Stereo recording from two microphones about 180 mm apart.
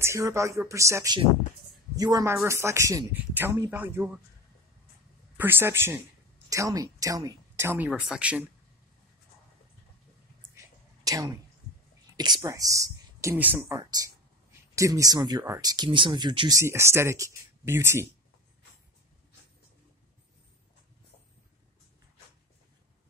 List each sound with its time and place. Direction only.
0.0 s speech: 15° right (ahead or behind)
5.4 s speech: 10° right (ahead or behind)
11.1 s speech: 20° right (ahead or behind)